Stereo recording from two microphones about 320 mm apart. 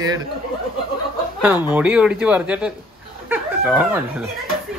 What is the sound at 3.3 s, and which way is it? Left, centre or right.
Chicken, centre.